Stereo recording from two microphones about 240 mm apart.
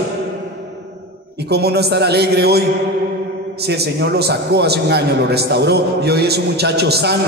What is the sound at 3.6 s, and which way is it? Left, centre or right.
A man's voice, right.